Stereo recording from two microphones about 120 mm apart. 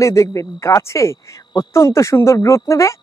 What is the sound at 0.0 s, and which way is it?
Speech, 25° left (ahead or behind).